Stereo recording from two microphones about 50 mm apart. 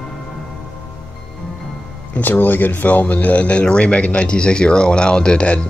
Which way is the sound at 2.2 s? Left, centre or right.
Left.